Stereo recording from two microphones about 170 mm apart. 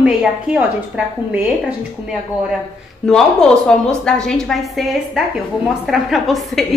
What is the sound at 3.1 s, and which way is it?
A woman's voice, 5° left (ahead or behind).